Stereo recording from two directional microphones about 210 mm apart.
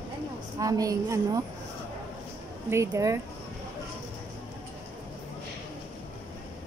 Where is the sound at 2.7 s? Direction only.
15° right (ahead or behind).